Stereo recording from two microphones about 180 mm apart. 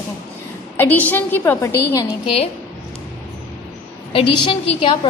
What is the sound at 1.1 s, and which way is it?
A woman's voice, 15° left (ahead or behind).